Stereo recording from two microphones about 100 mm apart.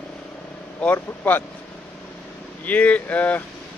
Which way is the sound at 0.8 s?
15° left (ahead or behind).